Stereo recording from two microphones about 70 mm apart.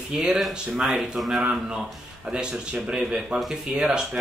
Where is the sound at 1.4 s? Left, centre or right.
Centre.